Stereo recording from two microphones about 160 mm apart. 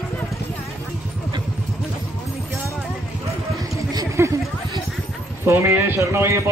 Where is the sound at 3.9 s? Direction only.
20° right (ahead or behind).